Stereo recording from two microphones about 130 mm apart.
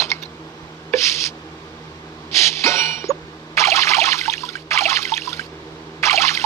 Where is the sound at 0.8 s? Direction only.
20° left (ahead or behind).